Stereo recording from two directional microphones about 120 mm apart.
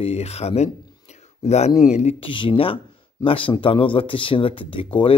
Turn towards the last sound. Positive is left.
turn(degrees=50)  # may be behind; listen again after turning